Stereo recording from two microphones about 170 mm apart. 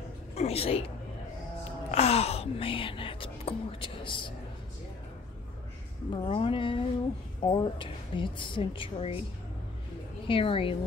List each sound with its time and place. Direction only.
0.3 s a woman's voice: 35° left (ahead or behind)
1.6 s whispering: 35° left (ahead or behind)
6.1 s a woman's voice: 35° left (ahead or behind)
10.2 s speech: 30° left (ahead or behind)